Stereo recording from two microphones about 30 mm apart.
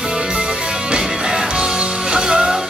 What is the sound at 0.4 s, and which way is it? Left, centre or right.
Music, right.